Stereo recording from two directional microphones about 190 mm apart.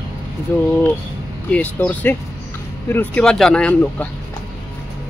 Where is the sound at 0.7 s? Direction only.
10° left (ahead or behind).